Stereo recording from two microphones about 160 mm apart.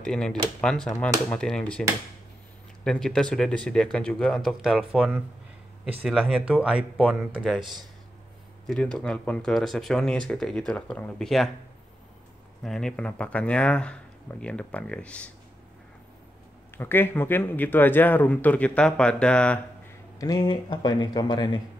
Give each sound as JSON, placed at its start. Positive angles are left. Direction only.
{"t": 0.0, "sound": "speech", "side_deg": 5}
{"t": 12.6, "sound": "speech", "side_deg": 5}
{"t": 16.7, "sound": "speech", "side_deg": 15}
{"t": 20.2, "sound": "speech", "side_deg": 25}